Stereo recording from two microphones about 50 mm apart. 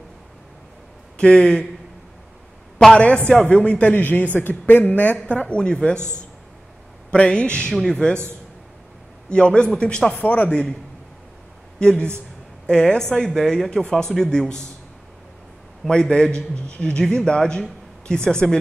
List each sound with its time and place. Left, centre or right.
1.1 s speech: centre
3.0 s a man's voice: left
5.9 s a man's voice: right
7.1 s a man's voice: left
7.7 s speech: centre
9.3 s a man's voice: centre
10.1 s a man's voice: left
10.5 s speech: centre
11.8 s speech: centre
15.9 s a man's voice: centre